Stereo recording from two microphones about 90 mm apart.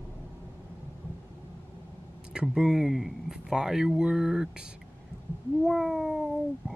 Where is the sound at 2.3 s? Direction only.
5° right (ahead or behind).